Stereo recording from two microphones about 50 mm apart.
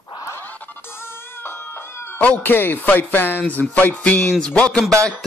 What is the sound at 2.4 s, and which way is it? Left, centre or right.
Speech, left.